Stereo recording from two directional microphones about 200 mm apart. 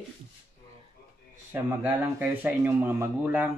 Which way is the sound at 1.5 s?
10° right (ahead or behind).